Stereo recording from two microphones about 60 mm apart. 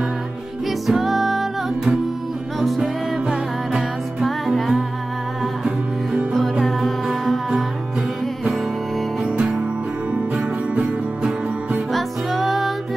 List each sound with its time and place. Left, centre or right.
0.7 s music: centre
6.6 s music: centre
9.2 s music: centre
11.9 s music: centre